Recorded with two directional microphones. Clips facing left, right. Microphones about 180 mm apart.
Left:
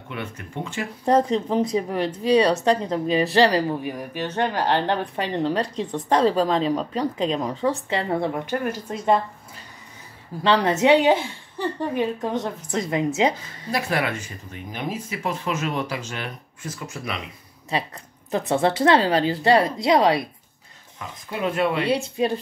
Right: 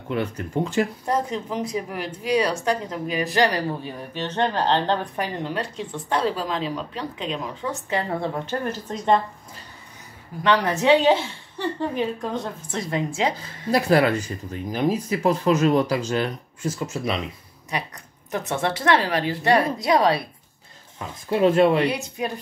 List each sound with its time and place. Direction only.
0.1 s speech: 40° right (ahead or behind)
1.0 s speech: 30° left (ahead or behind)
3.8 s a woman's voice: 10° left (ahead or behind)
5.4 s speech: 35° left (ahead or behind); by 9.2 s 5° left (ahead or behind)
10.4 s a woman's voice: 25° left (ahead or behind)
13.7 s speech: 35° right (ahead or behind)
17.6 s a sound: 25° left (ahead or behind)
18.5 s a woman's voice: 25° left (ahead or behind)
21.3 s speech: 30° right (ahead or behind)
21.8 s a woman's voice: 25° left (ahead or behind)